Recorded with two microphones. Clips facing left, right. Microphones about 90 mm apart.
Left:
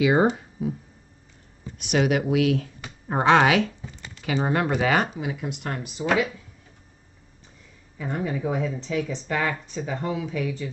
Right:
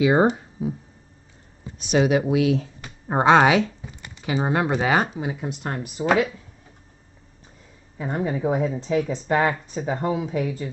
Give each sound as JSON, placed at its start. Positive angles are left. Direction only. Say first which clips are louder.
{"t": 0.0, "sound": "speech", "louder": "right 2 dB", "side_deg": -25}
{"t": 1.9, "sound": "speech", "louder": "right 3 dB", "side_deg": -25}
{"t": 5.1, "sound": "speech", "louder": "right 2 dB", "side_deg": -30}
{"t": 8.0, "sound": "speech", "louder": "right 3 dB", "side_deg": -30}